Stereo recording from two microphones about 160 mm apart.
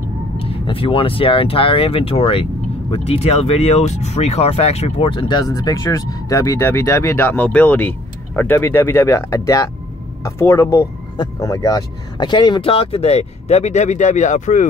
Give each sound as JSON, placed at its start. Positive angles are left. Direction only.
{"t": 0.4, "sound": "speech", "side_deg": 35}